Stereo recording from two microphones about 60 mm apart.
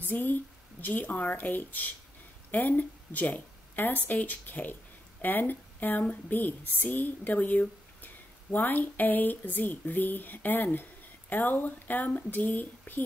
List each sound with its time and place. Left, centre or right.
0.0 s speech: left